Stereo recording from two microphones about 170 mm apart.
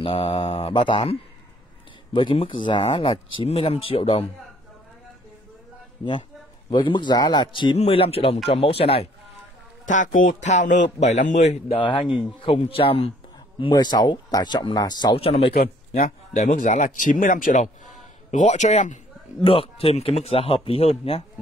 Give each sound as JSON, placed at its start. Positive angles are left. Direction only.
{"t": 0.0, "sound": "speech", "side_deg": 30}
{"t": 2.1, "sound": "speech", "side_deg": 30}
{"t": 6.7, "sound": "speech", "side_deg": 30}
{"t": 9.8, "sound": "speech", "side_deg": 50}
{"t": 11.8, "sound": "speech", "side_deg": 30}
{"t": 16.3, "sound": "speech", "side_deg": 45}
{"t": 19.4, "sound": "speech", "side_deg": 35}